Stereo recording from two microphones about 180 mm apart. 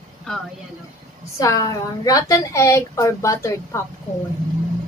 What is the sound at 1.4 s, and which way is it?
A woman's voice, 20° left (ahead or behind).